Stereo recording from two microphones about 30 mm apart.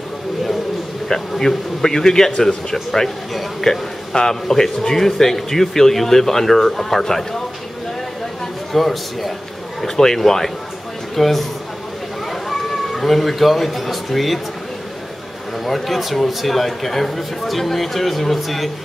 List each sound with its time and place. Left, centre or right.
1.8 s speech: centre
8.7 s speech: centre
15.6 s speech: centre